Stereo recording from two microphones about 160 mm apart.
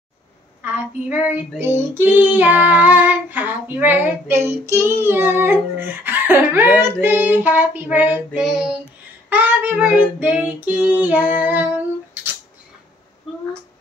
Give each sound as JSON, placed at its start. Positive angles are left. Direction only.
{"t": 0.6, "sound": "child singing", "side_deg": -10}